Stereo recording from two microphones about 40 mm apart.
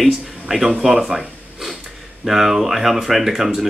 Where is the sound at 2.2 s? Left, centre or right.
Centre.